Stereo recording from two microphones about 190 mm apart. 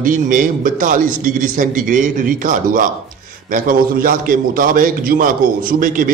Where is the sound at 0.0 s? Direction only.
45° right (ahead or behind).